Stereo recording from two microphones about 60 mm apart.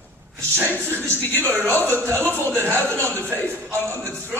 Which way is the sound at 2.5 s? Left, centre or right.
Right.